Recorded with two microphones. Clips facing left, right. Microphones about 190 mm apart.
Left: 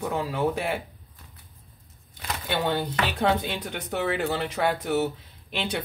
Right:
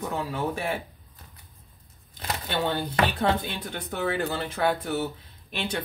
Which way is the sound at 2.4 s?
15° left (ahead or behind).